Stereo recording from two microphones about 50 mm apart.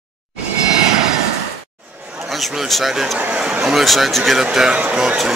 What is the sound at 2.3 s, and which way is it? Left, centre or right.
Speech, centre.